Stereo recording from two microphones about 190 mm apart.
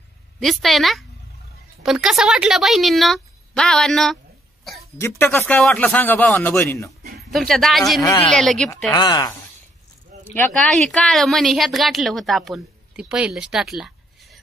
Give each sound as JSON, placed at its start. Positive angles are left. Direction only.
{"t": 0.4, "sound": "speech", "side_deg": 0}
{"t": 4.9, "sound": "speech", "side_deg": 10}
{"t": 7.2, "sound": "speech", "side_deg": 0}
{"t": 8.0, "sound": "speech", "side_deg": 20}
{"t": 8.3, "sound": "speech", "side_deg": 5}
{"t": 8.9, "sound": "speech", "side_deg": 20}
{"t": 10.3, "sound": "speech", "side_deg": 5}